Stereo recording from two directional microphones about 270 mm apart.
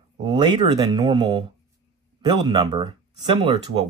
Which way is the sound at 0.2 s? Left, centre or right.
Centre.